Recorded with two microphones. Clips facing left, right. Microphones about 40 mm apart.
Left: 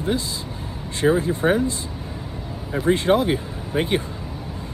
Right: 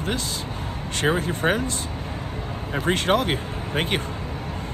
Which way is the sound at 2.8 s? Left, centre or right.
Right.